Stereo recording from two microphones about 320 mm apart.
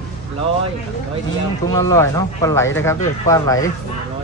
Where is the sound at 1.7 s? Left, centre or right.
Centre.